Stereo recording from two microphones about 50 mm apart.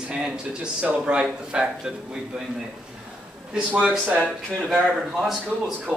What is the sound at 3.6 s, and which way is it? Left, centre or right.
Speech, right.